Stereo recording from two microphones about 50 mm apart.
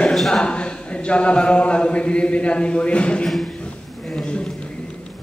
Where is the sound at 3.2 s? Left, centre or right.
Centre.